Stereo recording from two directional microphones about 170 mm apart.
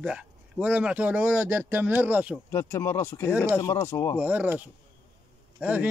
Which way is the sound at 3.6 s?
15° left (ahead or behind).